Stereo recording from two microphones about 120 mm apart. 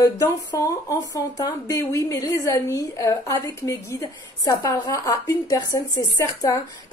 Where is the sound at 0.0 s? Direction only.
25° left (ahead or behind).